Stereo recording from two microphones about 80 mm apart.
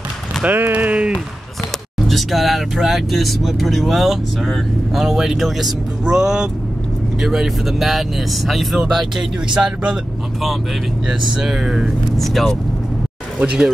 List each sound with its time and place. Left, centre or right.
0.4 s speech: right
2.0 s speech: centre
11.1 s speech: centre
13.4 s speech: centre